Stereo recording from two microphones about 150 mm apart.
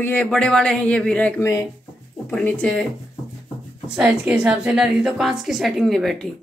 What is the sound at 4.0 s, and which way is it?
A woman's voice, 5° right (ahead or behind).